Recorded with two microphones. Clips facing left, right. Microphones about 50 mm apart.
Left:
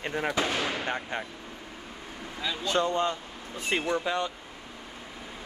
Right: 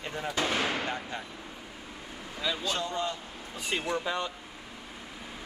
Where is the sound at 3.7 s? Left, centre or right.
Left.